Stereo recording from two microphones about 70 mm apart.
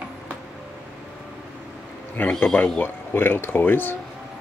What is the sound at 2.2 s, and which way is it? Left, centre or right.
Speech, left.